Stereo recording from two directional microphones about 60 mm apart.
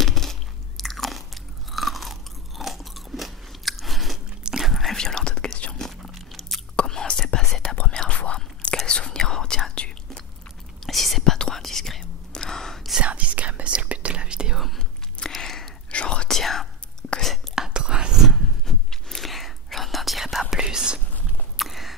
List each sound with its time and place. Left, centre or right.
0.0 s biting: centre
4.4 s whispering: centre
4.6 s whispering: centre
4.9 s whispering: centre
5.9 s biting: centre
6.8 s whispering: centre
10.9 s whispering: centre
13.0 s whispering: right
15.1 s a sound: centre
15.9 s whispering: centre
16.3 s whispering: centre
17.6 s whispering: centre
18.3 s whispering: centre
21.5 s a sound: centre